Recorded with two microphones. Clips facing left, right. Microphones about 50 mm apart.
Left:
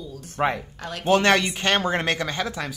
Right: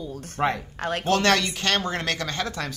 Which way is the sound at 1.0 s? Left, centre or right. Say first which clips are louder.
Left 3 dB; centre.